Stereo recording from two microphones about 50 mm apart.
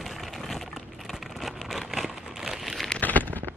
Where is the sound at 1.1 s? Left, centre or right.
Centre.